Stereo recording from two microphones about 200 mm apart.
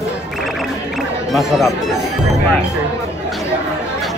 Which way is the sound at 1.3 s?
Centre (ahead or behind).